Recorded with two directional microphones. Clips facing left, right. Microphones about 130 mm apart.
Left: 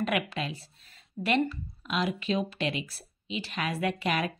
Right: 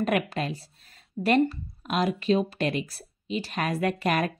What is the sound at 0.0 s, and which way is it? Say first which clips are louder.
Speech: right 4 dB; 45° right (ahead or behind).